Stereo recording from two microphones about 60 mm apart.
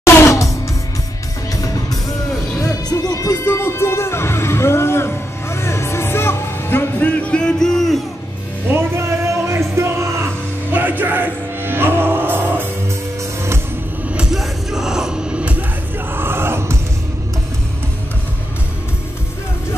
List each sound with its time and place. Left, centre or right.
0.0 s music: left
1.5 s music: left
3.4 s music: left
7.0 s music: left; by 8.0 s centre
8.7 s music: right
10.7 s music: right
14.3 s music: centre
16.1 s crowd: right